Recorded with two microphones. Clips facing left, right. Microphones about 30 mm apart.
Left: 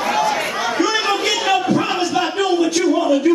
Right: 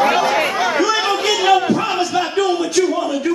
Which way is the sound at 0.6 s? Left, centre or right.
Centre.